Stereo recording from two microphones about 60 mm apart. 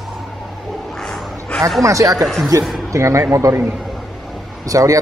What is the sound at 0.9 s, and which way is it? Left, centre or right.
Dog, centre.